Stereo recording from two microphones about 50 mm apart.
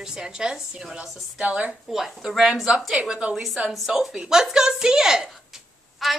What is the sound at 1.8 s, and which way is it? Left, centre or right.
A woman's voice, centre.